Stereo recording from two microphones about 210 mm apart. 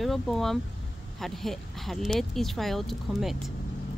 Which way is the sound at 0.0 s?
Centre (ahead or behind).